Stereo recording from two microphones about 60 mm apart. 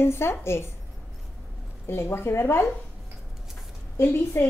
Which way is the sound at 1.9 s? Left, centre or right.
Left.